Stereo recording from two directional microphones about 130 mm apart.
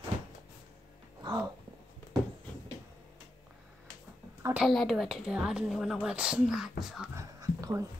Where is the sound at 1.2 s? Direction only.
35° right (ahead or behind).